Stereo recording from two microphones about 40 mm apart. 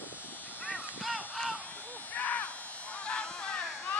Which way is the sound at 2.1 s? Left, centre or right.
Left.